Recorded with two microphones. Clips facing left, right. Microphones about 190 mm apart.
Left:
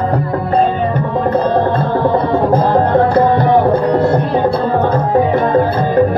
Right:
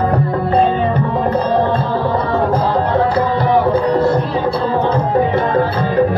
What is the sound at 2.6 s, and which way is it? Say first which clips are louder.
Music: left 4 dB; 50° left (ahead or behind).